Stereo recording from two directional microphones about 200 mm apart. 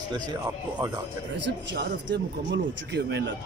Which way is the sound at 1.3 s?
60° right (ahead or behind).